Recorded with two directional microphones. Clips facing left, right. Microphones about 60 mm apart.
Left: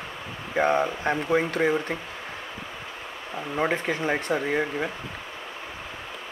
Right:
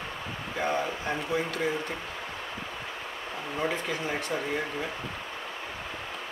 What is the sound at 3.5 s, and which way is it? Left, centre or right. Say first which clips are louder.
Speech: left 5 dB; left.